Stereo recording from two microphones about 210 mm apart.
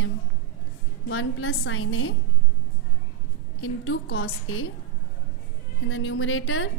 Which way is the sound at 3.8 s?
70° left (ahead or behind).